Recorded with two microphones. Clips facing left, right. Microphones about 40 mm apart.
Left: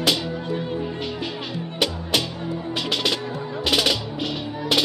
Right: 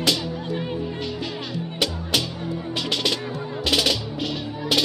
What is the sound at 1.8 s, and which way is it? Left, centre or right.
Music, centre.